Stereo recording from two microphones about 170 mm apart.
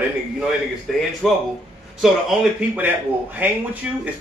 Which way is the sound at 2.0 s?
5° right (ahead or behind).